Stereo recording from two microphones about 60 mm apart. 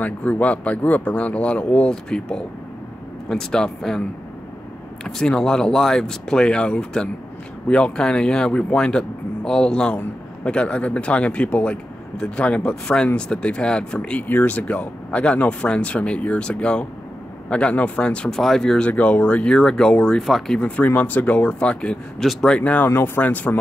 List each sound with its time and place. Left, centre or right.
0.0 s speech: left
5.0 s speech: centre
18.8 s speech: left
20.2 s speech: centre
20.5 s speech: left
22.2 s speech: centre
22.5 s speech: left
22.8 s speech: left